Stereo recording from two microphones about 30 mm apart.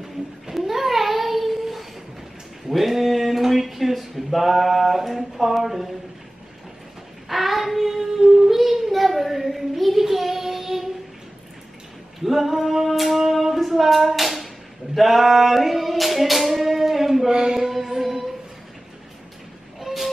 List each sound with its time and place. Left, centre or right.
0.5 s a sound: centre
7.2 s child singing: centre
7.9 s a sound: centre
10.0 s child singing: centre
12.3 s female singing: centre
15.0 s singing: centre
17.3 s a sound: right
17.6 s music: centre
19.8 s vehicle: centre